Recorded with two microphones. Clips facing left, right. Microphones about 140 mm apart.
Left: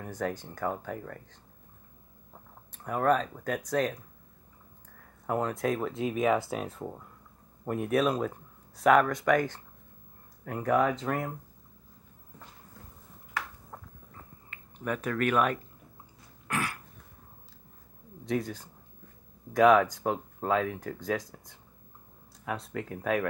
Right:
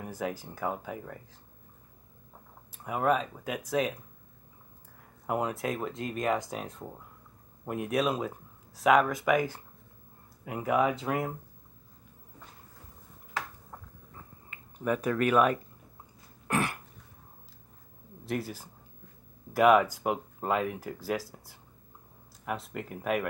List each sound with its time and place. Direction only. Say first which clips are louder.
0.0 s speech: left 1 dB; 5° right (ahead or behind)
2.7 s speech: left 1 dB; 5° right (ahead or behind)
5.2 s speech: left 1 dB; 10° right (ahead or behind)
14.9 s speech: right 2 dB; 10° right (ahead or behind)
16.4 s throat clearing: right 3 dB; 20° right (ahead or behind)
18.2 s speech: left 3 dB; 5° right (ahead or behind)